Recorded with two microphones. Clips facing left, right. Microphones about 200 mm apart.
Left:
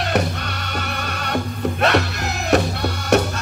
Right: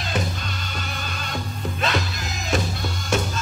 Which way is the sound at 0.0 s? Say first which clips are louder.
Left 6 dB; 65° left (ahead or behind).